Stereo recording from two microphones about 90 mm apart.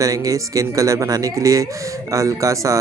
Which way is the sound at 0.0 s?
40° right (ahead or behind).